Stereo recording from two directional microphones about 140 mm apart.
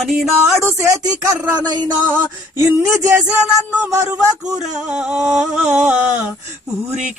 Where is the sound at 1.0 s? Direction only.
30° right (ahead or behind).